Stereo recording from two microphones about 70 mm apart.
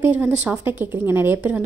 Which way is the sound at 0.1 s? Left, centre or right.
Right.